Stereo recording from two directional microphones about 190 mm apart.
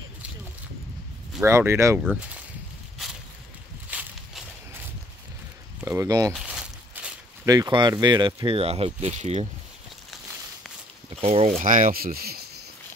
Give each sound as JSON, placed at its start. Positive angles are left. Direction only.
{"t": 1.4, "sound": "speech", "side_deg": -15}
{"t": 3.9, "sound": "walk", "side_deg": -5}
{"t": 5.9, "sound": "speech", "side_deg": -15}
{"t": 6.3, "sound": "walk", "side_deg": -5}
{"t": 7.4, "sound": "speech", "side_deg": -20}
{"t": 11.1, "sound": "speech", "side_deg": -30}